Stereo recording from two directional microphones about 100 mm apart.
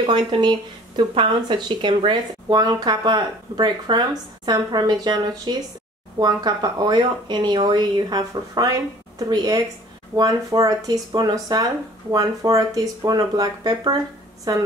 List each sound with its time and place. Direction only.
0.0 s speech: 55° right (ahead or behind)